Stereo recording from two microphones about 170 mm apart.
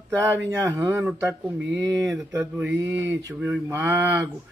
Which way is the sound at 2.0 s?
Centre (ahead or behind).